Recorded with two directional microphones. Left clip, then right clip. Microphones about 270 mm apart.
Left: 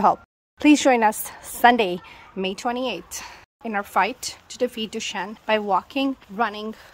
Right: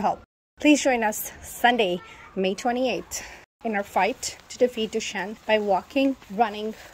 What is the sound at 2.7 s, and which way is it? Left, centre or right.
Speech, left.